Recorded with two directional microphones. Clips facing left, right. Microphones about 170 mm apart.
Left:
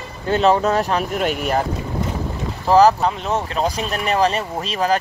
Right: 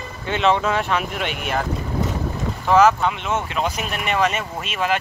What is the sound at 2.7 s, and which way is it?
Speech, 35° left (ahead or behind).